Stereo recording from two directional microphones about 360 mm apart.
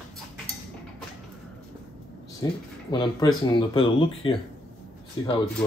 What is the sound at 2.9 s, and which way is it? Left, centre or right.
Speech, centre.